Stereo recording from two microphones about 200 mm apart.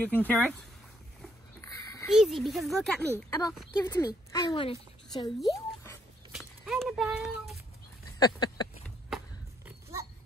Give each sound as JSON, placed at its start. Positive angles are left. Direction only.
{"t": 0.0, "sound": "speech", "side_deg": 10}
{"t": 2.0, "sound": "speech", "side_deg": 0}
{"t": 3.2, "sound": "a woman's voice", "side_deg": 15}
{"t": 6.3, "sound": "horse", "side_deg": 0}
{"t": 8.2, "sound": "a sound", "side_deg": 20}
{"t": 9.7, "sound": "dog", "side_deg": -15}